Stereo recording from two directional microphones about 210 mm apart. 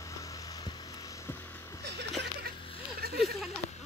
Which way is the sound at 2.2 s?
50° right (ahead or behind).